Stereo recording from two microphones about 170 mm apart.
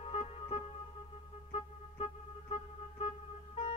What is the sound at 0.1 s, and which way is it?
Music, 40° left (ahead or behind).